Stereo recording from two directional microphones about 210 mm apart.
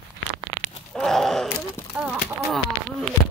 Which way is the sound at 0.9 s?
Centre (ahead or behind).